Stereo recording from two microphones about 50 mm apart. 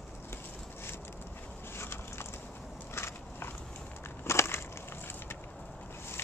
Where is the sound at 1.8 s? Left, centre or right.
Left.